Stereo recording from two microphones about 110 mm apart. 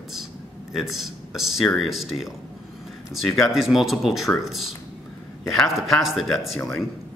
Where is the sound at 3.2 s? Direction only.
Centre (ahead or behind).